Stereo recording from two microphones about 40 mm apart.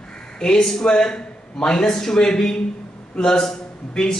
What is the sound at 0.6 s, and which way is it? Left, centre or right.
A man's voice, centre.